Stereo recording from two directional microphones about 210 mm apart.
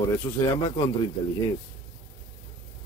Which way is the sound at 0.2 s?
20° left (ahead or behind).